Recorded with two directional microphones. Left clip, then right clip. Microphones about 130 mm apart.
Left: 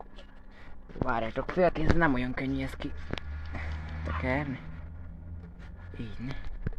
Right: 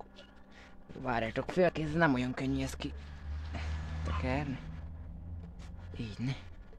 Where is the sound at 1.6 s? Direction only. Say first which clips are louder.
Left 3 dB; 10° right (ahead or behind).